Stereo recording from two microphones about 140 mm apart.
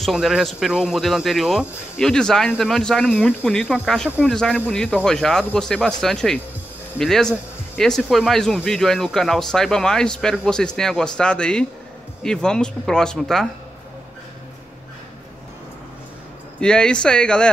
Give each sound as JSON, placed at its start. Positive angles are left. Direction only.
{"t": 0.0, "sound": "speech", "side_deg": -5}
{"t": 16.5, "sound": "speech", "side_deg": 5}